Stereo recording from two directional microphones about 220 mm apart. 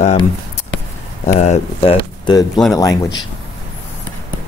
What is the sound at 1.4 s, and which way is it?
Speech, 30° left (ahead or behind).